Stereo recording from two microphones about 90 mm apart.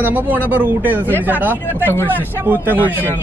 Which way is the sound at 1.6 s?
20° left (ahead or behind).